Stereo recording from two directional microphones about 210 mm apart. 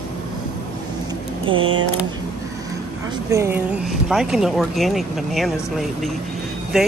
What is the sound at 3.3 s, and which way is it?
Speech, 10° right (ahead or behind).